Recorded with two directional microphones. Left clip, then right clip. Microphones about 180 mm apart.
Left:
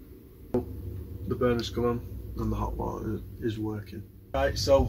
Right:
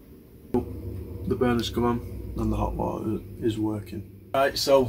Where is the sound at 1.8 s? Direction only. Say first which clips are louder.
Right 4 dB; 55° right (ahead or behind).